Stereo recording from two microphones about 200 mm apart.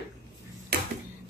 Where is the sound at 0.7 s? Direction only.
55° right (ahead or behind).